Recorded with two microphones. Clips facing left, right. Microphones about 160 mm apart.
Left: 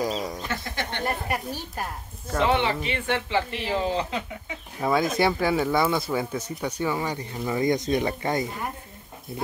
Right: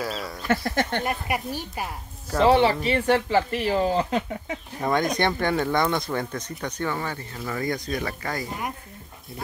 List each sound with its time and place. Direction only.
0.0 s a sound: 15° left (ahead or behind)
0.5 s speech: 45° right (ahead or behind)
1.0 s a woman's voice: 10° right (ahead or behind)
2.4 s speech: 35° right (ahead or behind)
4.8 s speech: 5° left (ahead or behind); by 8.5 s 25° left (ahead or behind)